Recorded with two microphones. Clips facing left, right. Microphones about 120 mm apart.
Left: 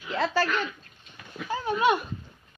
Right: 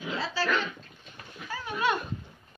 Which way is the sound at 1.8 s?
15° left (ahead or behind).